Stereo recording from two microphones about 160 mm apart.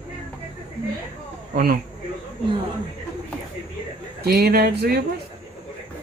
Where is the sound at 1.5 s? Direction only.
70° right (ahead or behind).